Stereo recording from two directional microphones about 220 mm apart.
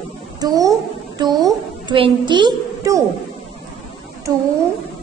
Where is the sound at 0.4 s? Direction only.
15° right (ahead or behind).